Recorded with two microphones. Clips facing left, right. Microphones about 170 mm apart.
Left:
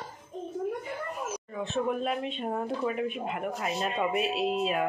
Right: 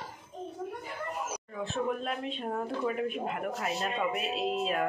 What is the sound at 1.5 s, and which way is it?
Speech, 5° left (ahead or behind).